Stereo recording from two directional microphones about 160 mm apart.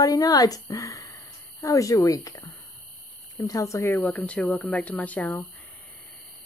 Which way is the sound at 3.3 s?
20° left (ahead or behind).